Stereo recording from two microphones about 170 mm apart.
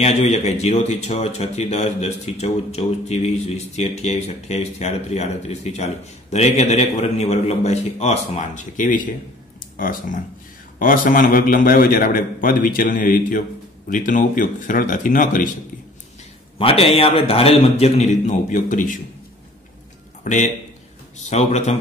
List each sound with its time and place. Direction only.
0.0 s a man's voice: 40° left (ahead or behind)
16.5 s speech: 35° left (ahead or behind); by 18.9 s 50° left (ahead or behind)
20.2 s a man's voice: 45° left (ahead or behind)